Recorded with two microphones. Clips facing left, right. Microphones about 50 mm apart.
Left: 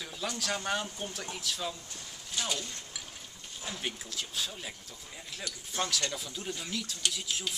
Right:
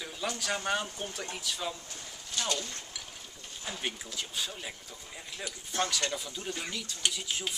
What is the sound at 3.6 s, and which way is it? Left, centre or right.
Speech, centre.